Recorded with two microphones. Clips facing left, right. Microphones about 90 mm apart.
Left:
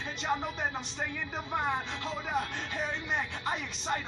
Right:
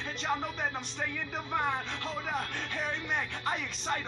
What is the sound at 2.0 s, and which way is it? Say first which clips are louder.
A man's voice: left 1 dB; 15° left (ahead or behind).